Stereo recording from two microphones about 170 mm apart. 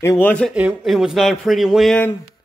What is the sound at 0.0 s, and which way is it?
Music, 15° left (ahead or behind).